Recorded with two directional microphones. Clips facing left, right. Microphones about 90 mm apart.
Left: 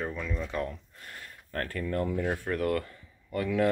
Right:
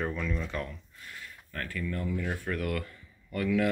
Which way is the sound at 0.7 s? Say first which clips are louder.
Left 3 dB; 50° left (ahead or behind).